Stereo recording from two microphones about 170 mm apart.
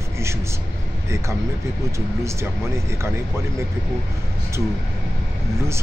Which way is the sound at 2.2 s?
15° right (ahead or behind).